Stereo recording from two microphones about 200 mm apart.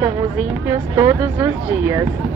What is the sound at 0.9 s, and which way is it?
Speech, 10° right (ahead or behind).